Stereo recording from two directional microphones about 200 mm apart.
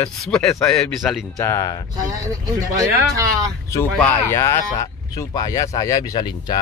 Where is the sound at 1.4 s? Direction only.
15° left (ahead or behind).